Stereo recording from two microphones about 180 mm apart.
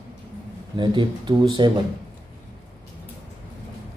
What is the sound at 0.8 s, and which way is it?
Speech, 25° right (ahead or behind).